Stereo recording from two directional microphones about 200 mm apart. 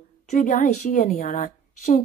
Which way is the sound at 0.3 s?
40° left (ahead or behind).